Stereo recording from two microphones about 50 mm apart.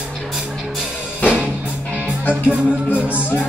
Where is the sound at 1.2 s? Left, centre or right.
Right.